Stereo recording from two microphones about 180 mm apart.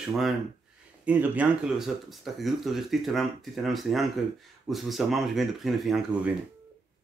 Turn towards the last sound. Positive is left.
turn(degrees=-5)  # may be behind; listen again after turning